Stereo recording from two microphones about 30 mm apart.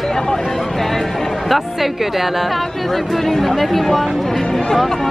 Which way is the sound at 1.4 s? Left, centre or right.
Centre.